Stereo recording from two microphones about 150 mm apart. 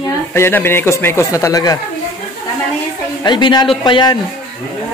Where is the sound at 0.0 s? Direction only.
15° left (ahead or behind).